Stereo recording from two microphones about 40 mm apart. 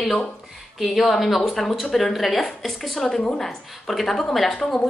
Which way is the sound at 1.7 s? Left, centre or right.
Centre.